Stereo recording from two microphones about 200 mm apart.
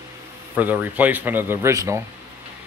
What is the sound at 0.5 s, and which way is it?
Speech, 10° right (ahead or behind).